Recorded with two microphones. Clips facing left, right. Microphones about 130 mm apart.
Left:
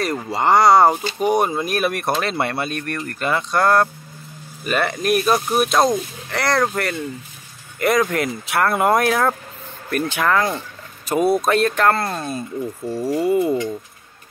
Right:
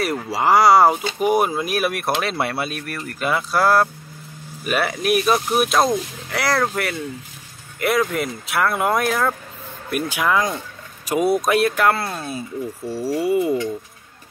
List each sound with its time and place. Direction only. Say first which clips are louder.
0.0 s speech: even; 5° right (ahead or behind)
12.8 s speech: left 2 dB; 20° left (ahead or behind)